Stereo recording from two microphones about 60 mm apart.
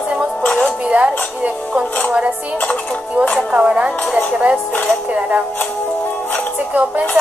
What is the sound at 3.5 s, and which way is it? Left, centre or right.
Speech, centre.